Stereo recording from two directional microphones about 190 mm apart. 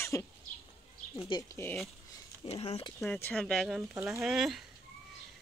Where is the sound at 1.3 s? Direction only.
15° left (ahead or behind).